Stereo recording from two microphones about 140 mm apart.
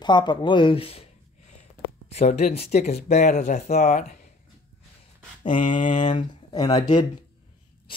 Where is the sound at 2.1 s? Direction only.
50° left (ahead or behind).